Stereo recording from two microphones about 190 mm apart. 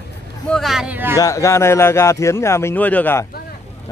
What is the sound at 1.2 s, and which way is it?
Speech, 15° left (ahead or behind).